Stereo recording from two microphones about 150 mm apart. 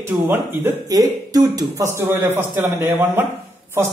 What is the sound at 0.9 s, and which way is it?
A man's voice, 25° right (ahead or behind).